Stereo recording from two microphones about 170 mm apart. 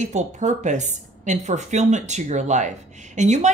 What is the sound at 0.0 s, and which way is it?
A woman's voice, 45° right (ahead or behind).